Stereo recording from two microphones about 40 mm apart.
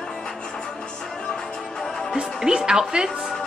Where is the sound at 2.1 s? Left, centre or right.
Centre.